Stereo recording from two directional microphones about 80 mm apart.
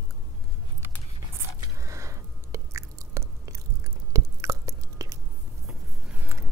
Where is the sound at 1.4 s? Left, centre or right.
Right.